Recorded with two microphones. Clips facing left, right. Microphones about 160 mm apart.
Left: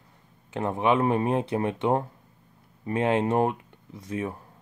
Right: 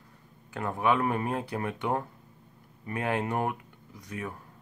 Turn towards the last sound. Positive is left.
turn(degrees=25)  # may be behind; listen again after turning